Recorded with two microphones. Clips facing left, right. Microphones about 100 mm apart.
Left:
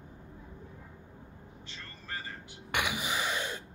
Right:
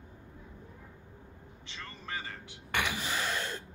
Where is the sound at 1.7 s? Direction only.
90° right.